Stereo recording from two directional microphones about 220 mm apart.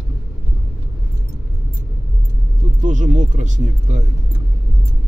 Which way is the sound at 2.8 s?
35° right (ahead or behind).